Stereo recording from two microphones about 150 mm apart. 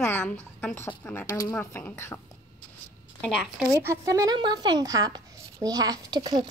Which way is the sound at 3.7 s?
20° right (ahead or behind).